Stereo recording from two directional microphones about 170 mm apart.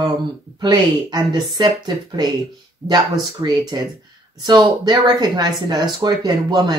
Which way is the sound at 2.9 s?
25° right (ahead or behind).